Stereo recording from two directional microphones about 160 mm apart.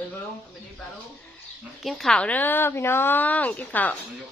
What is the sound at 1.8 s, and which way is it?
A woman's voice, 5° left (ahead or behind).